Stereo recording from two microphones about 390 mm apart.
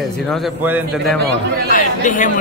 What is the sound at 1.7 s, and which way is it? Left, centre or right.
Speech, centre.